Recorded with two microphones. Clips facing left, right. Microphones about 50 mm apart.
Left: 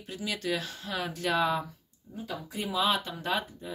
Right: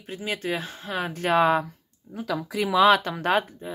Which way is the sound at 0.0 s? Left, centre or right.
Right.